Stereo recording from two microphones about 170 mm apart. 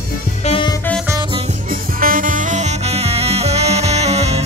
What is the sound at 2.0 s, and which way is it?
Music, 55° right (ahead or behind).